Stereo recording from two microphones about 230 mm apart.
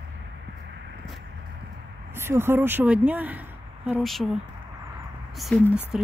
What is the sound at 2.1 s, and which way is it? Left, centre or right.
Speech, centre.